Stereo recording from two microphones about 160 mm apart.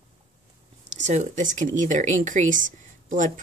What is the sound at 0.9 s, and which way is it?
Speech, 45° right (ahead or behind).